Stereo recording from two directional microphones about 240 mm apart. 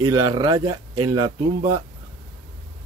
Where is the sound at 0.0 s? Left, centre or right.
Centre.